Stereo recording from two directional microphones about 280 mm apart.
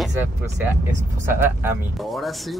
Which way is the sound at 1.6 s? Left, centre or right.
Centre.